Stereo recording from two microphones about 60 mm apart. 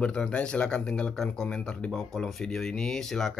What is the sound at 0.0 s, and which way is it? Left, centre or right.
Speech, centre.